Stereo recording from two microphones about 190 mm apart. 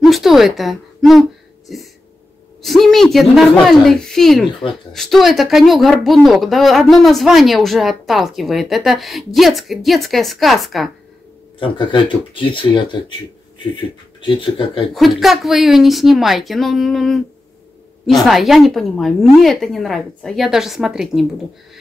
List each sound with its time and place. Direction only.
0.0 s a woman's voice: centre (ahead or behind)
2.6 s speech: centre (ahead or behind)
11.6 s speech: 25° left (ahead or behind)
14.2 s speech: 25° left (ahead or behind)
15.0 s speech: centre (ahead or behind)